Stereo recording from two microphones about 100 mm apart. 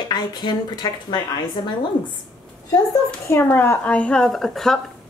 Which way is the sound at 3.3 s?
20° left (ahead or behind).